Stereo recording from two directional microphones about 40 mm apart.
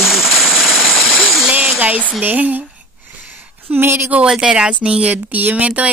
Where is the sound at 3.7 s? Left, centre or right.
Right.